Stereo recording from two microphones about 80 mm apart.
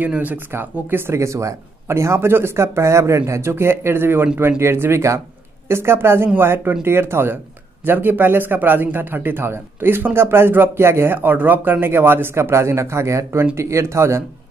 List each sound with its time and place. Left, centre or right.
0.0 s a man's voice: right
11.1 s a man's voice: right